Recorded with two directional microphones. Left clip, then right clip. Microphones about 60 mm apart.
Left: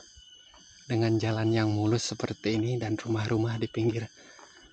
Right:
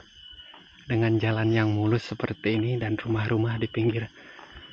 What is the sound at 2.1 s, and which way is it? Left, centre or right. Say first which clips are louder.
Speech: right 3 dB; centre.